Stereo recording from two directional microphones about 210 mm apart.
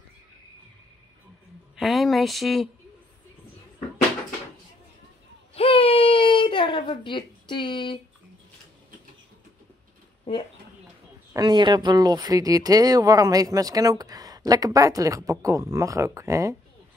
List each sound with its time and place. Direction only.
1.8 s speech: centre (ahead or behind)
5.5 s baby cry: 25° left (ahead or behind)
11.3 s speech: 20° right (ahead or behind)